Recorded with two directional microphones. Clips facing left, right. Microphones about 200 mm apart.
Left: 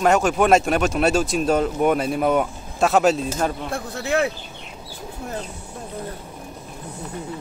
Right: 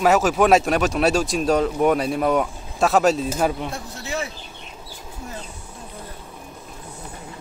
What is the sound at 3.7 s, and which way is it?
Speech, 60° left (ahead or behind).